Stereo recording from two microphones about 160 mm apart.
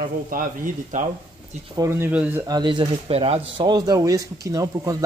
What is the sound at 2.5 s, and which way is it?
Speech, 30° right (ahead or behind).